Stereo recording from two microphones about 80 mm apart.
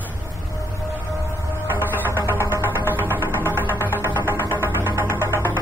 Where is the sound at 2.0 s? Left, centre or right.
Right.